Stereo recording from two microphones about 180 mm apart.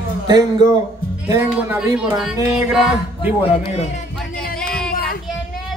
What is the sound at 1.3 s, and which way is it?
Speech, 15° right (ahead or behind).